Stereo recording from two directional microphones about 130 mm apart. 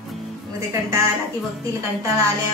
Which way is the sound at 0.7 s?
20° right (ahead or behind).